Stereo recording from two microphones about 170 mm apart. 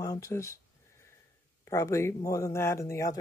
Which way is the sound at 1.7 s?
15° left (ahead or behind).